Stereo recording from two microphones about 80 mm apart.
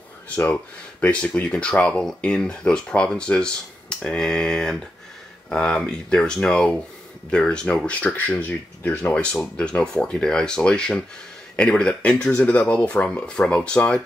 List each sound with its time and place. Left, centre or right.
1.0 s speech: centre